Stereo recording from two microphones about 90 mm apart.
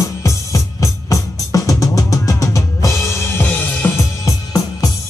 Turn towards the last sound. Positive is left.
turn(degrees=40)  # may be behind; listen again after turning